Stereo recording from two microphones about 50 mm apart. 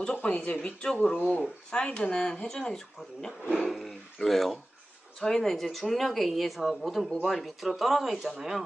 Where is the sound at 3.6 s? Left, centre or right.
Centre.